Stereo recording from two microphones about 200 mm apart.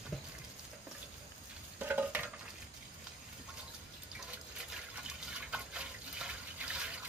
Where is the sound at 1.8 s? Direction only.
10° right (ahead or behind).